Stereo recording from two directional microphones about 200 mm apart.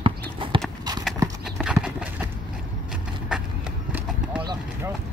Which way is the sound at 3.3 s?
5° right (ahead or behind).